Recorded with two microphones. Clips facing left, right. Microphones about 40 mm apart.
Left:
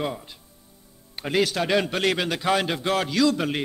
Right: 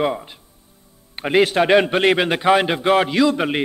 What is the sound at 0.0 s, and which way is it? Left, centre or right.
A man's voice, right.